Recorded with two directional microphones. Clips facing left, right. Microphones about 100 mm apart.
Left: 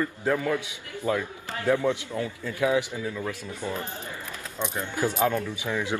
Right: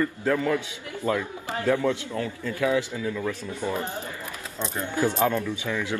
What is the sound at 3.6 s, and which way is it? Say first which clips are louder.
Speech: right 4 dB; 15° right (ahead or behind).